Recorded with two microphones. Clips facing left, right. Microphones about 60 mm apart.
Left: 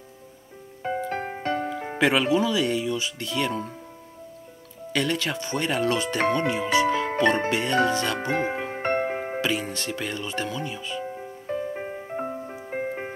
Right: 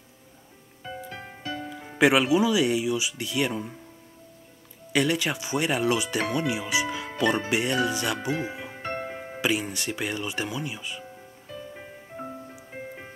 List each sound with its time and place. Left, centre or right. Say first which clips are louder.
0.8 s music: left 10 dB; left
2.0 s speech: right 1 dB; centre
4.9 s speech: right 1 dB; centre
8.2 s music: left 4 dB; left
9.4 s speech: right 5 dB; centre
11.1 s music: left 11 dB; left